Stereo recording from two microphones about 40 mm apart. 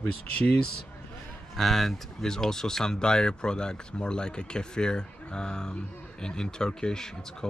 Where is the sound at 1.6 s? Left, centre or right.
Centre.